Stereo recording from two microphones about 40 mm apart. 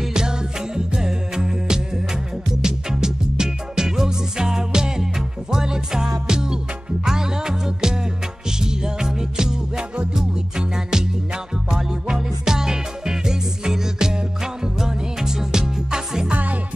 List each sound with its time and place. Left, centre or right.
0.1 s music: centre
16.3 s music: right